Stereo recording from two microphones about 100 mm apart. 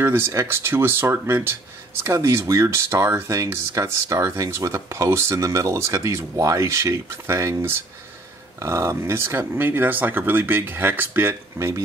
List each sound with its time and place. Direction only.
0.0 s speech: 25° right (ahead or behind)